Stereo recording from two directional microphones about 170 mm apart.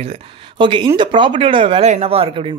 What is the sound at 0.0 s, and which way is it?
A woman's voice, 30° right (ahead or behind).